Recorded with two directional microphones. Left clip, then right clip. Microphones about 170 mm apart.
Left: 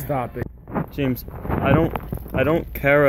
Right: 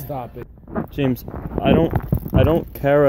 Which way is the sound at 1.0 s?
50° right (ahead or behind).